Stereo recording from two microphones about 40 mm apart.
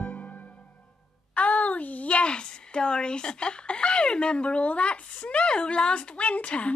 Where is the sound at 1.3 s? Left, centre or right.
Left.